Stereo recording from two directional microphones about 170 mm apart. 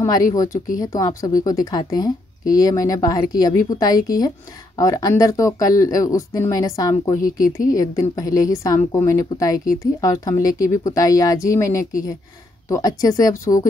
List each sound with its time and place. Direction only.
0.0 s a woman's voice: 20° left (ahead or behind)